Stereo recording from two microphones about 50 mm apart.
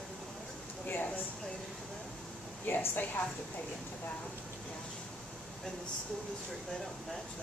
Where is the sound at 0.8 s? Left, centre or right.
Left.